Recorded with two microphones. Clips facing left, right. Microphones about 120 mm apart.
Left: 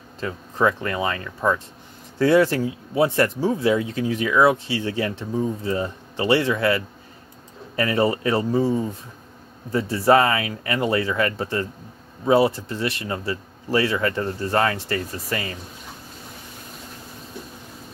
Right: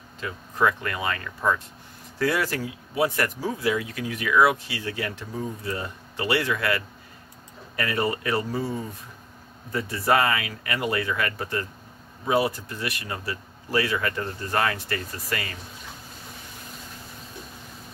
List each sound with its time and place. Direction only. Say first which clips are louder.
0.2 s speech: left 3 dB; 25° left (ahead or behind)